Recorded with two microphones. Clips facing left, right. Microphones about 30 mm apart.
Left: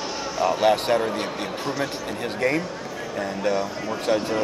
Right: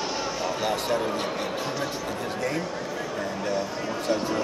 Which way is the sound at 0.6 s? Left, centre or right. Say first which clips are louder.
Left 7 dB; left.